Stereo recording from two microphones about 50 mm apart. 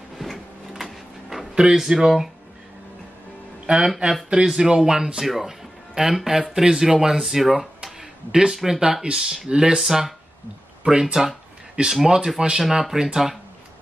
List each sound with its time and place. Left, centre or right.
0.2 s printer: centre
1.5 s speech: centre
3.6 s speech: centre
9.8 s speech: centre